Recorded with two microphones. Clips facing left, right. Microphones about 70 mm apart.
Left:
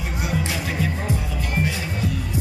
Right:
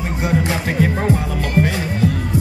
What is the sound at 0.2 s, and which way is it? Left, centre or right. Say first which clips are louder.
Music: right 7 dB; right.